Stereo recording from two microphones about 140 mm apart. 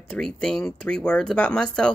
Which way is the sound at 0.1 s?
5° left (ahead or behind).